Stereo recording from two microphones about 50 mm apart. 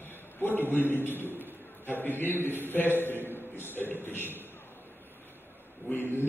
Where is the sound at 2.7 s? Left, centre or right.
Left.